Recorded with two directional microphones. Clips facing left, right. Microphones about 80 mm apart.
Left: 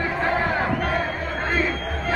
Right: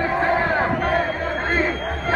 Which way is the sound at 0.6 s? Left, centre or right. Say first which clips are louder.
Right 3 dB; right.